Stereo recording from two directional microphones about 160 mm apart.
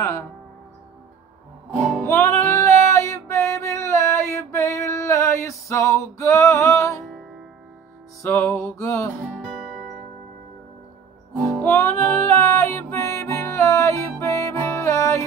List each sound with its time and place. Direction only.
1.8 s music: 5° left (ahead or behind)
2.0 s music: 15° left (ahead or behind)
2.9 s a sound: 20° left (ahead or behind)
8.2 s music: 15° left (ahead or behind)
9.2 s music: 5° right (ahead or behind)
11.4 s music: 10° left (ahead or behind)